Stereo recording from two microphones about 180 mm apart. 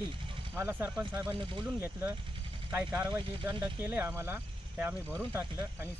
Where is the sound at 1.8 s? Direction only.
10° right (ahead or behind).